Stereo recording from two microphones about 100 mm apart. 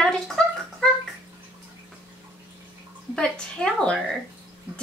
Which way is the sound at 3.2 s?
10° left (ahead or behind).